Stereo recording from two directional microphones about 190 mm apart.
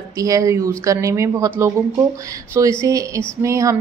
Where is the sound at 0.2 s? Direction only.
15° right (ahead or behind).